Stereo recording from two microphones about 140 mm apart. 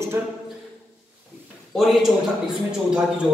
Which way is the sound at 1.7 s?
Centre (ahead or behind).